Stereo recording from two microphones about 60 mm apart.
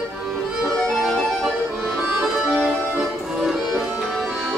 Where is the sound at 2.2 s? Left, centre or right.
Centre.